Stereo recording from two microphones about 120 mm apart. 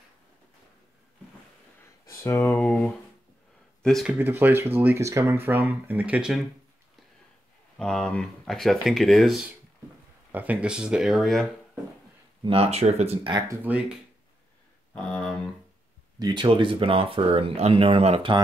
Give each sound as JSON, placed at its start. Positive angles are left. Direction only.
{"t": 2.0, "sound": "a sound", "side_deg": 20}
{"t": 2.5, "sound": "speech", "side_deg": 10}
{"t": 4.1, "sound": "speech", "side_deg": -15}
{"t": 7.7, "sound": "speech", "side_deg": 5}
{"t": 10.3, "sound": "speech", "side_deg": -10}
{"t": 12.4, "sound": "speech", "side_deg": -55}
{"t": 13.7, "sound": "speech", "side_deg": -10}
{"t": 15.0, "sound": "speech", "side_deg": 5}
{"t": 16.2, "sound": "speech", "side_deg": -35}